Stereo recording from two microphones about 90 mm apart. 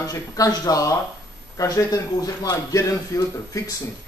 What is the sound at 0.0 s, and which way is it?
A man's voice, 40° left (ahead or behind).